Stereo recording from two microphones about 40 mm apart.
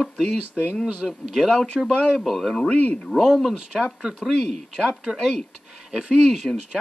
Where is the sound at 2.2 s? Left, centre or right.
Centre.